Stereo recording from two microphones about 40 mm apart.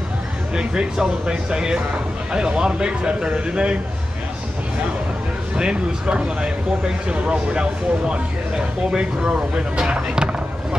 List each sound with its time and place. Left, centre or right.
0.6 s speech: centre
5.6 s speech: right